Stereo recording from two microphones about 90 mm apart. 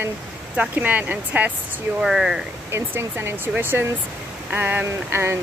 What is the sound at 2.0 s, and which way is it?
Speech, 5° right (ahead or behind).